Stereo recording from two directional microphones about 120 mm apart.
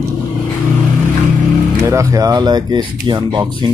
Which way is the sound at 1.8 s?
25° right (ahead or behind).